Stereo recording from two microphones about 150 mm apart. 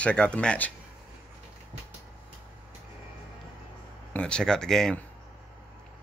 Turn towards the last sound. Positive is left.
turn(degrees=5)  # may be behind; listen again after turning